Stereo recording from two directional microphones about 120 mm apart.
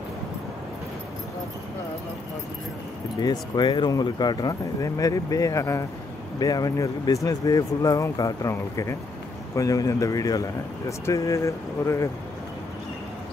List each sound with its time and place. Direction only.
3.2 s speech: 35° left (ahead or behind)